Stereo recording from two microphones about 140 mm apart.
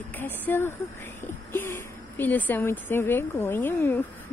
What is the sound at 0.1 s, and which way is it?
Speech, 15° left (ahead or behind).